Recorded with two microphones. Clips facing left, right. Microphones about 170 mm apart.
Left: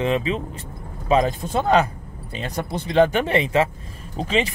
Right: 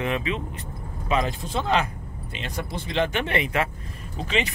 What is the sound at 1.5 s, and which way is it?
Speech, 45° left (ahead or behind).